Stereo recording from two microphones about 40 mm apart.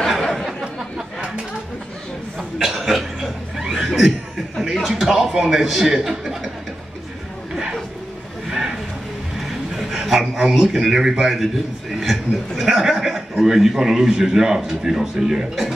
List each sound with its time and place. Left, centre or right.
0.3 s a sound: centre
2.3 s chuckle: centre
4.8 s speech: centre
6.0 s chuckle: centre
8.5 s a sound: centre
10.7 s speech: centre